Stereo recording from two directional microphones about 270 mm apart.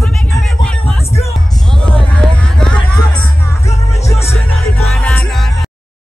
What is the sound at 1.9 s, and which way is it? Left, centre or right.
Music, centre.